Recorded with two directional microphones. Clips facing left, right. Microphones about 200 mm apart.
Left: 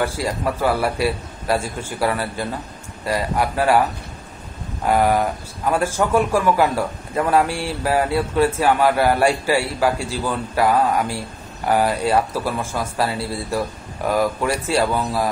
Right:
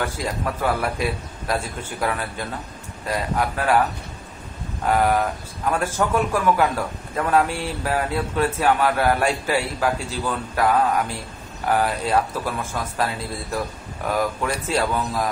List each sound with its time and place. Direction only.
0.0 s speech: 10° left (ahead or behind)
4.8 s speech: 10° left (ahead or behind)